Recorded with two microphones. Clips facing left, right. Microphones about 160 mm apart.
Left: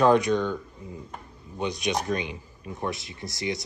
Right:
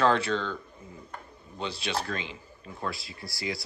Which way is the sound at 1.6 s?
15° left (ahead or behind).